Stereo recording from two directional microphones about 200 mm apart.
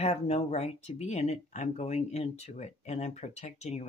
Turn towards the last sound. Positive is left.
turn(degrees=35)  # may be behind; listen again after turning